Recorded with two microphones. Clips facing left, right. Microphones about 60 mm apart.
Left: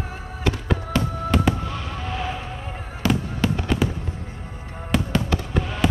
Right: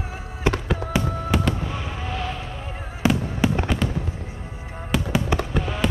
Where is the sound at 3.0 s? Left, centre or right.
Right.